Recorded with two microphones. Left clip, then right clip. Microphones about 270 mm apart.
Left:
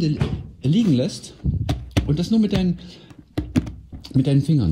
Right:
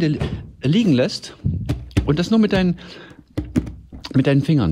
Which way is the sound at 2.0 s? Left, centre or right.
Right.